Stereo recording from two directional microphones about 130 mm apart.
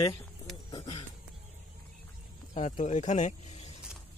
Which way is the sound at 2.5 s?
60° left (ahead or behind).